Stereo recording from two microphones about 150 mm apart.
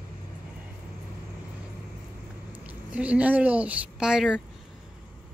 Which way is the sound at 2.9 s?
10° right (ahead or behind).